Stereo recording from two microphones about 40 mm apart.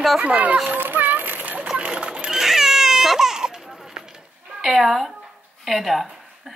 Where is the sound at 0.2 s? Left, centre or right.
Right.